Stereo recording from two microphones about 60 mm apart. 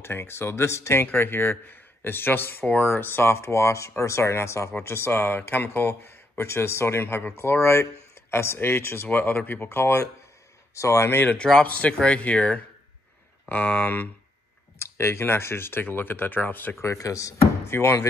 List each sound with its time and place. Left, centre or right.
0.0 s speech: left
1.0 s speech: left
9.0 s speech: left
10.7 s speech: left
11.2 s speech: centre
14.8 s speech: left
16.8 s speech: left